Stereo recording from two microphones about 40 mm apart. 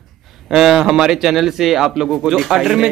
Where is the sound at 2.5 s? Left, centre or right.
Centre.